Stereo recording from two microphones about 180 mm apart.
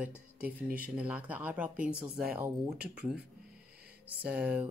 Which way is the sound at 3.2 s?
60° right (ahead or behind).